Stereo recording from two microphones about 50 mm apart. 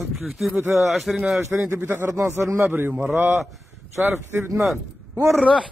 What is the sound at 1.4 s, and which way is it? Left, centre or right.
Speech, right.